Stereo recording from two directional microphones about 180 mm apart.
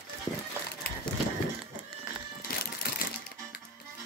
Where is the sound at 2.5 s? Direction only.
55° left (ahead or behind).